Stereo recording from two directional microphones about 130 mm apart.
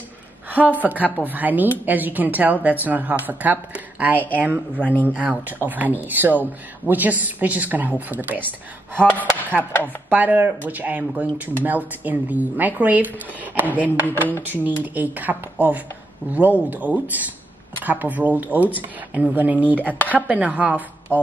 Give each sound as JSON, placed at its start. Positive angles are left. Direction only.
{"t": 0.5, "sound": "a woman's voice", "side_deg": -15}
{"t": 9.6, "sound": "speech", "side_deg": 15}
{"t": 10.0, "sound": "a woman's voice", "side_deg": -10}
{"t": 14.0, "sound": "speech", "side_deg": 15}
{"t": 14.4, "sound": "a woman's voice", "side_deg": -15}